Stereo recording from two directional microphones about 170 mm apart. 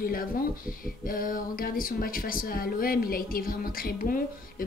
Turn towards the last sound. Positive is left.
turn(degrees=60)  # may be behind; listen again after turning